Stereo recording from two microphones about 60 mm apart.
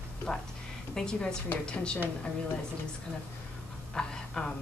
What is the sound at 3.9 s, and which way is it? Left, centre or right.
Speech, centre.